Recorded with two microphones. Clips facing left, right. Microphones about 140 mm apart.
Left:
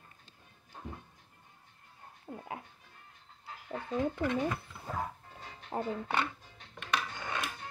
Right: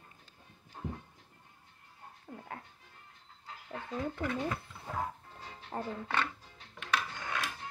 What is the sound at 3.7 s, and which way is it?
Speech, 20° left (ahead or behind).